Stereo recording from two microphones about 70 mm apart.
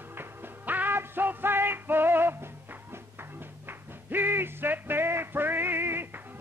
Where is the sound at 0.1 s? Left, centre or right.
Right.